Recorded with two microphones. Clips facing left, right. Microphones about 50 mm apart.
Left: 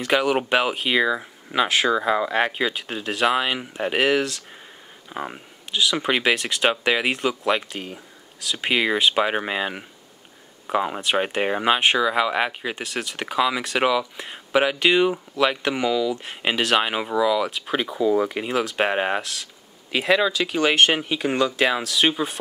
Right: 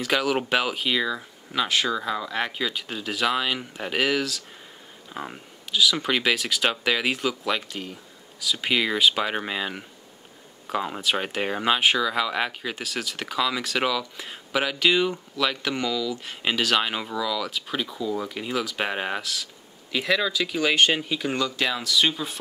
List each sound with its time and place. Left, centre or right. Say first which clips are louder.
0.0 s speech: left 3 dB; centre
6.9 s speech: left 3 dB; centre
20.8 s speech: left 3 dB; left
21.3 s speech: left 6 dB; centre